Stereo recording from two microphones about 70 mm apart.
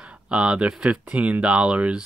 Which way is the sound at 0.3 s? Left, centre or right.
Centre.